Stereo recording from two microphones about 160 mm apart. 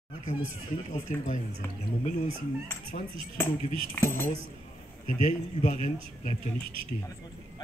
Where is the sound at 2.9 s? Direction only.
45° left (ahead or behind).